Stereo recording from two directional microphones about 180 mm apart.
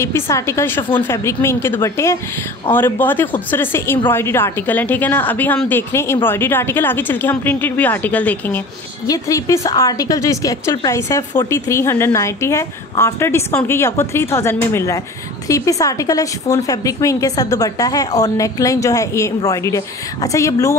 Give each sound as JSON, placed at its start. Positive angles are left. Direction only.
{"t": 0.0, "sound": "speech", "side_deg": 15}